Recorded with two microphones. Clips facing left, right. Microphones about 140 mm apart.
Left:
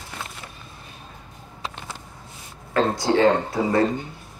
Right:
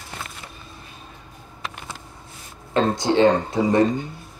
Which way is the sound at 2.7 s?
25° right (ahead or behind).